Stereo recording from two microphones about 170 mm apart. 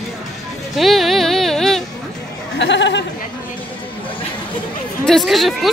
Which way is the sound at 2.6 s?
90° left.